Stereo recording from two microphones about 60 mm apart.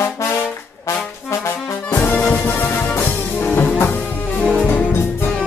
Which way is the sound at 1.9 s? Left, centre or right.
Left.